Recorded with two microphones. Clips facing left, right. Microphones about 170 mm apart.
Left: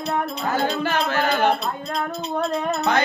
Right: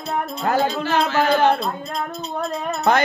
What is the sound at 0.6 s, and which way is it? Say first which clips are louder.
Speech: right 2 dB; 55° left (ahead or behind).